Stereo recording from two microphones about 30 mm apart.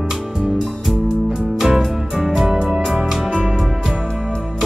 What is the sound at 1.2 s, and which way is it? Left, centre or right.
Music, centre.